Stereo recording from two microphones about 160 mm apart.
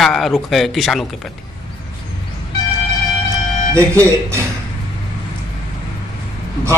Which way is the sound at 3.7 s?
15° right (ahead or behind).